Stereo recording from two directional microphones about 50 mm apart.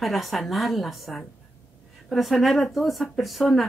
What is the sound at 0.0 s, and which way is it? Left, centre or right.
Speech, centre.